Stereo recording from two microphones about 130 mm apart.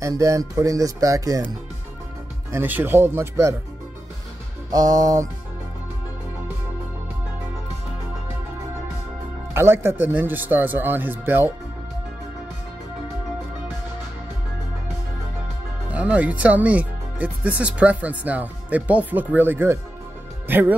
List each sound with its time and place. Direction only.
0.0 s speech: 25° right (ahead or behind)
2.5 s speech: 15° right (ahead or behind)
4.6 s speech: 30° right (ahead or behind)
9.5 s speech: 20° right (ahead or behind)
15.9 s speech: 10° right (ahead or behind)